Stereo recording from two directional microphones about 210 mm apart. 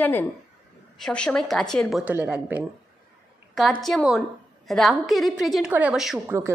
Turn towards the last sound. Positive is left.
turn(degrees=-5)  # may be behind; listen again after turning